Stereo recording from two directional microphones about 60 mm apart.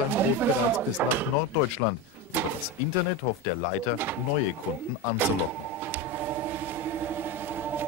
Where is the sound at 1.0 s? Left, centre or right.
Right.